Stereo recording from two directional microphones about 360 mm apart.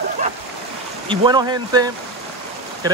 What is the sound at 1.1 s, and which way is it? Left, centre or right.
Speech, centre.